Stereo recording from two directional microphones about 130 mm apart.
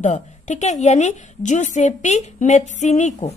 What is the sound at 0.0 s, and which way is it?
A woman's voice, 65° left (ahead or behind).